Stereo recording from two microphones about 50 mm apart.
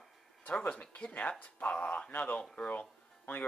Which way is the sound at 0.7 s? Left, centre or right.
Left.